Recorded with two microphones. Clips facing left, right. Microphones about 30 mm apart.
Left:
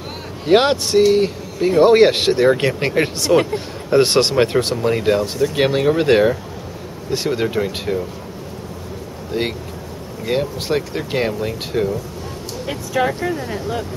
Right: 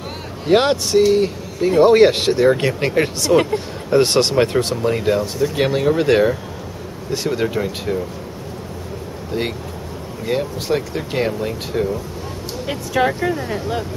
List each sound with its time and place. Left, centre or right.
0.5 s speech: centre
9.3 s speech: left
13.0 s speech: centre